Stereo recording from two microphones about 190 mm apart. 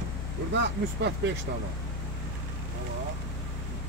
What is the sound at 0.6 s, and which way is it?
Speech, 65° right (ahead or behind).